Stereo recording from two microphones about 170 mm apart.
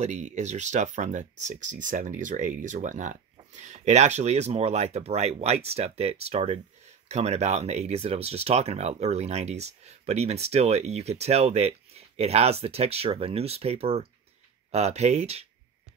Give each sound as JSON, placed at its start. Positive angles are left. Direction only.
{"t": 0.0, "sound": "speech", "side_deg": -45}